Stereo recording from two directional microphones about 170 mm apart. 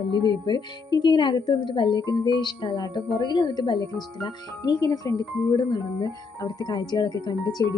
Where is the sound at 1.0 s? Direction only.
25° left (ahead or behind).